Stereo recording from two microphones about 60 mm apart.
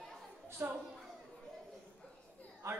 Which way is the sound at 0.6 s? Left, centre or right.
Right.